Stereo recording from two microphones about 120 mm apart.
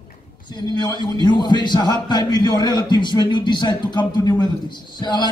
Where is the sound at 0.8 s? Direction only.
35° left (ahead or behind).